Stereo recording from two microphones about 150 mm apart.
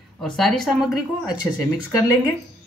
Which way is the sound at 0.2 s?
Centre (ahead or behind).